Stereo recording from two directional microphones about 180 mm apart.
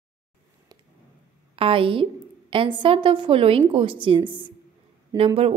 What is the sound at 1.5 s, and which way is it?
A woman's voice, 30° right (ahead or behind).